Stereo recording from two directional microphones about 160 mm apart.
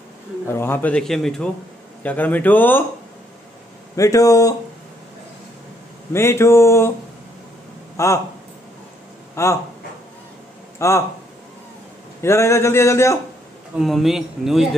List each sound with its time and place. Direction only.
0.5 s a man's voice: 15° left (ahead or behind)
3.9 s speech: 20° left (ahead or behind)
6.1 s a man's voice: 15° left (ahead or behind)
8.0 s speech: 20° left (ahead or behind)
9.3 s speech: 15° left (ahead or behind)
10.8 s a man's voice: 15° left (ahead or behind)
12.2 s a man's voice: 15° left (ahead or behind)
13.7 s speech: centre (ahead or behind)